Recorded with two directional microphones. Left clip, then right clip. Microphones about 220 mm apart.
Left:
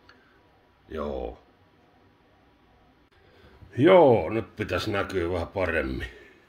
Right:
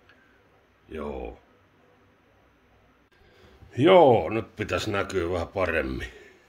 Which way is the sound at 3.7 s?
Centre (ahead or behind).